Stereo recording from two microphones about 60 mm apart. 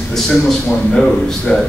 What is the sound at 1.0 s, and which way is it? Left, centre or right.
Speech, centre.